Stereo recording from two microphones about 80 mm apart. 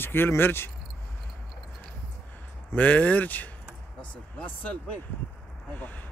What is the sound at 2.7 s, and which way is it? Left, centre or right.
Speech, centre.